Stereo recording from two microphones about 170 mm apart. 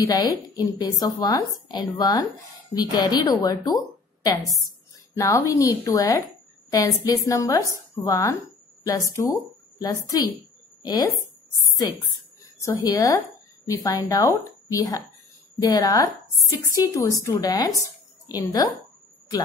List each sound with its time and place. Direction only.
0.0 s speech: 20° left (ahead or behind)
12.6 s speech: 20° left (ahead or behind)